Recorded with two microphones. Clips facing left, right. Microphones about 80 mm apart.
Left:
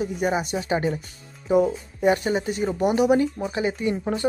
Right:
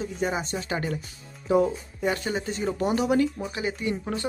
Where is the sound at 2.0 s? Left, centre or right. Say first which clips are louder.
Left 7 dB; left.